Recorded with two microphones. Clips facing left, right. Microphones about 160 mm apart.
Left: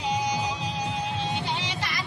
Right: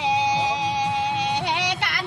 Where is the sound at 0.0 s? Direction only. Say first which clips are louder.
Right 5 dB; 90° right; by 2.0 s 65° right (ahead or behind).